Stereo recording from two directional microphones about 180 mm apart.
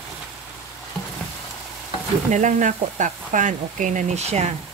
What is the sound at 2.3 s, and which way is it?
Speech, 45° right (ahead or behind).